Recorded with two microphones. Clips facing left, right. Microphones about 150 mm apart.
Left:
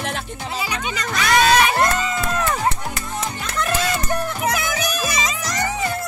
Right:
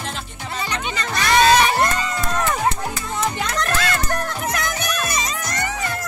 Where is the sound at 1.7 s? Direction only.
Centre (ahead or behind).